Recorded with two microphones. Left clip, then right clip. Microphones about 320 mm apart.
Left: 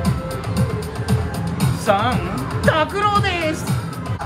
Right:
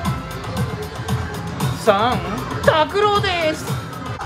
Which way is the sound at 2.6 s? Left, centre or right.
Centre.